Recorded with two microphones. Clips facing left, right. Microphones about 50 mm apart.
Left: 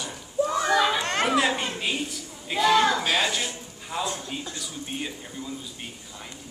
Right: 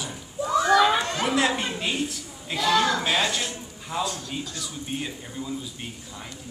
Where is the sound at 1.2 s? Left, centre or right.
Centre.